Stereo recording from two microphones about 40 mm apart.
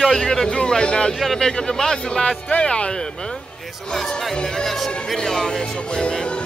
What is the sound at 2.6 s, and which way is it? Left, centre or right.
Speech, left.